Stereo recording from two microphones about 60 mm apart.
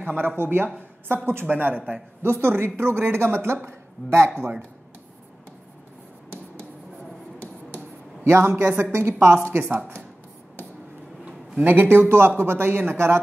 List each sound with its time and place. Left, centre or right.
0.0 s a woman's voice: right
4.4 s speech: right
8.2 s a man's voice: right
11.6 s speech: right